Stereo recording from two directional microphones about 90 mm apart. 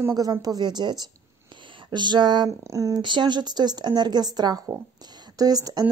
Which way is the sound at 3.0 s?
60° right (ahead or behind).